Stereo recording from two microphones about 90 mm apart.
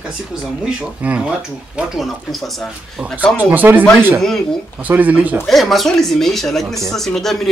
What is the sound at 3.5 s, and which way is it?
Speech, 20° right (ahead or behind).